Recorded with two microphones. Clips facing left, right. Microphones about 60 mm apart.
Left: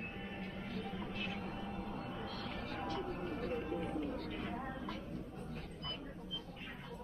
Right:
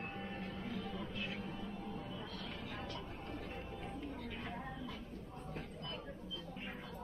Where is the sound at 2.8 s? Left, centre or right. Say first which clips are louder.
Left 6 dB; left.